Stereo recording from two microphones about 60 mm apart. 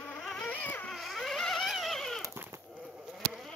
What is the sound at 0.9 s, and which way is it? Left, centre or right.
Rodents, centre.